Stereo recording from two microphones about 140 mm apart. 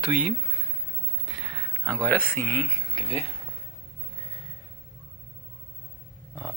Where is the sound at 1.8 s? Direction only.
5° left (ahead or behind).